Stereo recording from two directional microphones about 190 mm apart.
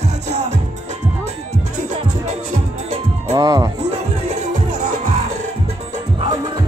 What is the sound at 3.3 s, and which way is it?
Speech, 20° right (ahead or behind).